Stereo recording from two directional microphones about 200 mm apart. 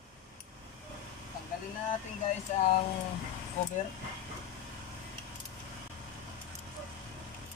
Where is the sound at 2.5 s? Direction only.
35° left (ahead or behind).